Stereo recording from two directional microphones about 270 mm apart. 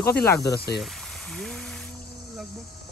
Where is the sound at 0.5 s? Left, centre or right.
Left.